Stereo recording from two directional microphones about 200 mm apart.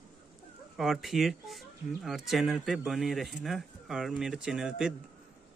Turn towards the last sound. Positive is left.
turn(degrees=-5)  # may be behind; listen again after turning